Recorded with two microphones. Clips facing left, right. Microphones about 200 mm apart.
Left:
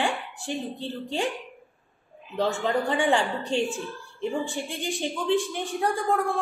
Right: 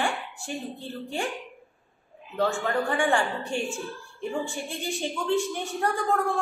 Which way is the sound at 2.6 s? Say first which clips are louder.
Left 1 dB; 20° left (ahead or behind).